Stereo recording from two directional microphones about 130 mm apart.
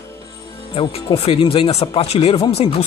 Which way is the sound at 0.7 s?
45° left (ahead or behind).